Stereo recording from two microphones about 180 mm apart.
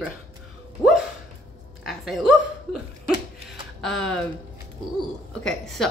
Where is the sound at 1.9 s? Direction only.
Centre (ahead or behind).